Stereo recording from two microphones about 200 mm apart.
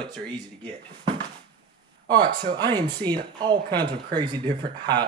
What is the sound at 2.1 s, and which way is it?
Speech, 20° right (ahead or behind).